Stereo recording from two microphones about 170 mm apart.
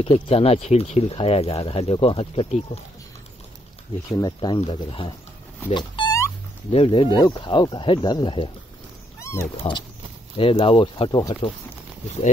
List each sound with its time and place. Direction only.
0.0 s speech: 35° left (ahead or behind)
4.2 s speech: 25° left (ahead or behind)
5.7 s a sound: 25° left (ahead or behind)
6.7 s speech: 35° left (ahead or behind)
9.2 s cat: 15° left (ahead or behind)
10.3 s speech: 30° left (ahead or behind)